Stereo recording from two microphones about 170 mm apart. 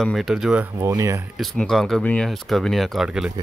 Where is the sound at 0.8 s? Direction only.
15° right (ahead or behind).